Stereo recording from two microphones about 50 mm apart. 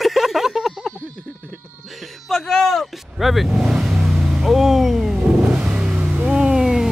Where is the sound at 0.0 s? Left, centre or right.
Centre.